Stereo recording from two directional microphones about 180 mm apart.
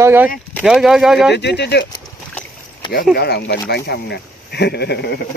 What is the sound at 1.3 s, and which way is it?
Speech, 70° left (ahead or behind).